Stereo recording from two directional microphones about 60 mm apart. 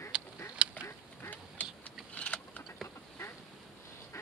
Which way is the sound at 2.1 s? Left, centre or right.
Left.